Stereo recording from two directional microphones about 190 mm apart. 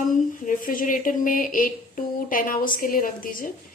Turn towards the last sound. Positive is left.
turn(degrees=45)  # may be behind; listen again after turning